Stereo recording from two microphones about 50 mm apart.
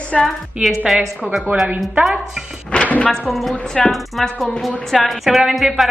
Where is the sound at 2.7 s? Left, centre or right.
Left.